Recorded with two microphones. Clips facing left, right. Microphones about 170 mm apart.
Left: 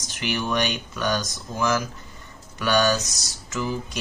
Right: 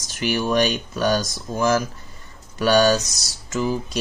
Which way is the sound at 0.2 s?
35° right (ahead or behind).